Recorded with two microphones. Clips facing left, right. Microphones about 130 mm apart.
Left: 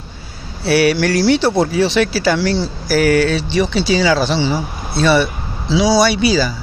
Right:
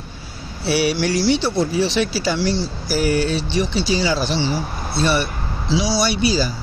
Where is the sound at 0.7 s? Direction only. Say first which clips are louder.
Left 5 dB; 70° left (ahead or behind).